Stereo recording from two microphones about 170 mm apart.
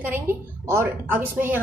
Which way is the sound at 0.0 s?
10° right (ahead or behind).